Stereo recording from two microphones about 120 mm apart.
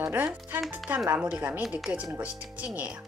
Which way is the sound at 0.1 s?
15° right (ahead or behind).